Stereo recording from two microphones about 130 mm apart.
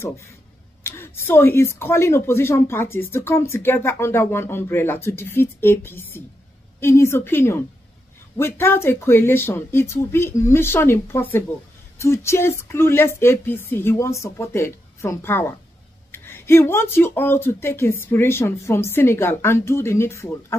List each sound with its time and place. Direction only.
0.8 s a woman's voice: 20° left (ahead or behind)